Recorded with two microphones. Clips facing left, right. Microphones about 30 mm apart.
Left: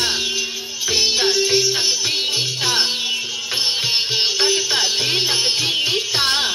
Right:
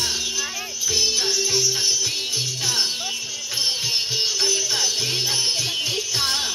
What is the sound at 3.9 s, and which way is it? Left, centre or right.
Music, left.